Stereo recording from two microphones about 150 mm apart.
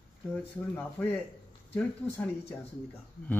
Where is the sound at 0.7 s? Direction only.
10° left (ahead or behind).